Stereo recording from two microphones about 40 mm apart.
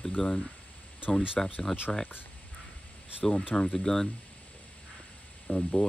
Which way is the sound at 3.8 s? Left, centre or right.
Centre.